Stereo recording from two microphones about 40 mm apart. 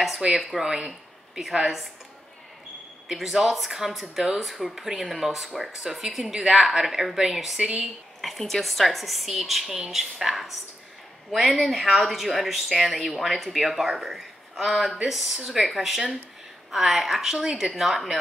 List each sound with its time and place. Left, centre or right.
0.5 s speech: centre
3.1 s speech: centre
7.5 s speech: centre
8.2 s speech: centre